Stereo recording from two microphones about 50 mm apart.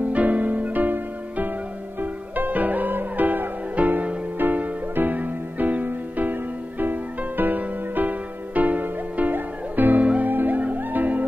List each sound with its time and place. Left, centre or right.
0.0 s music: right
4.4 s music: right